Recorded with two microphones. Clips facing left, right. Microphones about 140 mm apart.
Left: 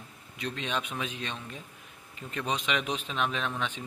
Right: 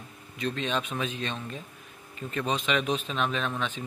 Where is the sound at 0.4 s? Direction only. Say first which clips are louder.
Right 4 dB; 15° left (ahead or behind).